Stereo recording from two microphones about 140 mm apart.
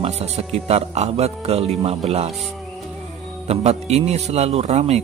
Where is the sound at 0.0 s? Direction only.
50° right (ahead or behind).